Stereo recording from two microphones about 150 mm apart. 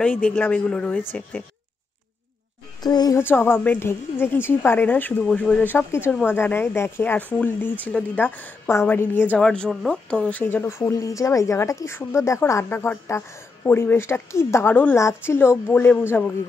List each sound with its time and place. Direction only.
0.0 s speech: 10° left (ahead or behind)
2.8 s speech: 25° left (ahead or behind)
3.2 s speech: 15° left (ahead or behind)